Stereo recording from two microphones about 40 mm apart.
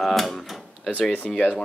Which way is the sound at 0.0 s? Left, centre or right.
Centre.